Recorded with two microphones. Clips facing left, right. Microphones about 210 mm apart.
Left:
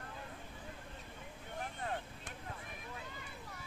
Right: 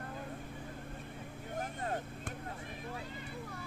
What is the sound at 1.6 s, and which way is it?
Vehicle, 45° right (ahead or behind).